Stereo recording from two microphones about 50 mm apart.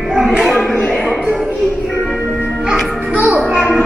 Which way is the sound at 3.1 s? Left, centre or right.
Right.